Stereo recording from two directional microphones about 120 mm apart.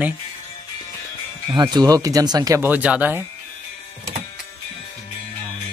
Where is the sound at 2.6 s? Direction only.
15° right (ahead or behind).